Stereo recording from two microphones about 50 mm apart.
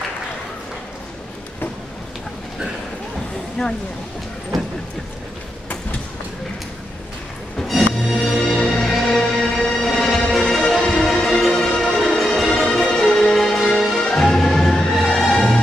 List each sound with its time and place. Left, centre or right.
7.5 s music: centre